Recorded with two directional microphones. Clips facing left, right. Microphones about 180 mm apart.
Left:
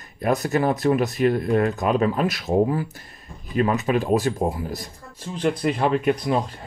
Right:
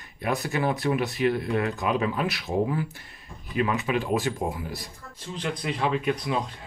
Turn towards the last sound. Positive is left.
turn(degrees=45)  # may be behind; listen again after turning